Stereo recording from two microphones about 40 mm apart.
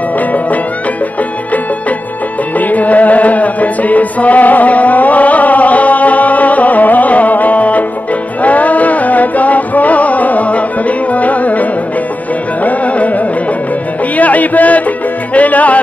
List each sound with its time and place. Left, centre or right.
2.7 s music: left
12.6 s music: left